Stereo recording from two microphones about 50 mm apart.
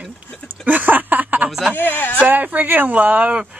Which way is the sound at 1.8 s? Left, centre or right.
Left.